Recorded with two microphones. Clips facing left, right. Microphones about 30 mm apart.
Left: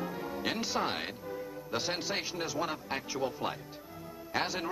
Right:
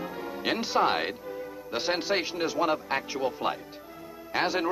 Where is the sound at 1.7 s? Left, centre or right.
Right.